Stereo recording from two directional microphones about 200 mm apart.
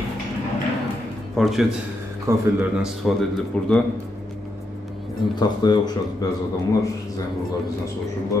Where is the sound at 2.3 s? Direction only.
15° right (ahead or behind).